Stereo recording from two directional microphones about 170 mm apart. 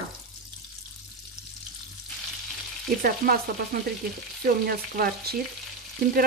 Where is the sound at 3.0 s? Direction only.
55° right (ahead or behind).